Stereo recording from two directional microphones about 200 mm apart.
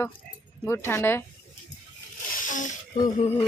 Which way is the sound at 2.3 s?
40° left (ahead or behind).